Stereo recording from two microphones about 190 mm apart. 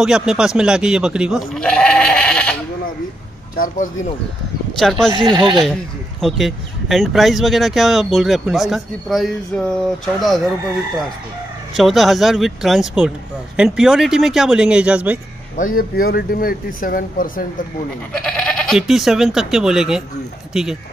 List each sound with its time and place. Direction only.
0.0 s speech: 5° right (ahead or behind)
3.5 s speech: 45° left (ahead or behind)
4.7 s speech: centre (ahead or behind)
5.2 s speech: 25° right (ahead or behind)
6.2 s speech: centre (ahead or behind)
11.7 s speech: centre (ahead or behind)
15.5 s speech: 45° left (ahead or behind)
18.2 s speech: 5° left (ahead or behind)